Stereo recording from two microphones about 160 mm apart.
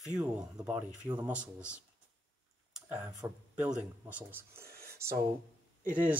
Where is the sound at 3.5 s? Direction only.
5° right (ahead or behind).